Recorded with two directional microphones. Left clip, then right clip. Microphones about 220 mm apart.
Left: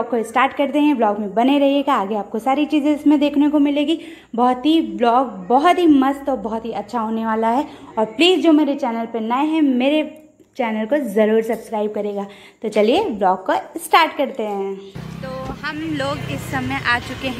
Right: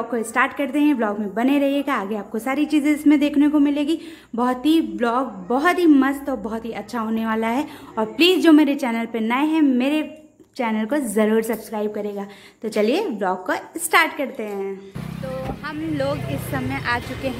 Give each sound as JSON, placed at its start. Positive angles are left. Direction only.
{"t": 0.1, "sound": "a woman's voice", "side_deg": 0}
{"t": 5.9, "sound": "a woman's voice", "side_deg": -10}
{"t": 11.7, "sound": "speech", "side_deg": 0}